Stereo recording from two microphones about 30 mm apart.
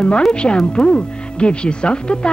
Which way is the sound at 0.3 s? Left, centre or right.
Left.